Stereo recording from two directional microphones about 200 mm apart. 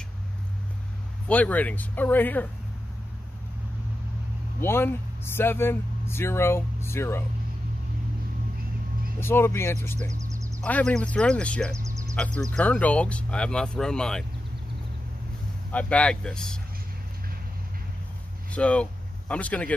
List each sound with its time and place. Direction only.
1.3 s speech: 5° left (ahead or behind)
4.6 s speech: 10° left (ahead or behind)
9.2 s speech: 10° left (ahead or behind)
10.1 s a sound: 15° right (ahead or behind)
10.6 s speech: 5° left (ahead or behind)
11.7 s a sound: 15° right (ahead or behind)
12.2 s speech: 5° left (ahead or behind)
15.7 s speech: 5° left (ahead or behind)
18.5 s speech: 5° left (ahead or behind)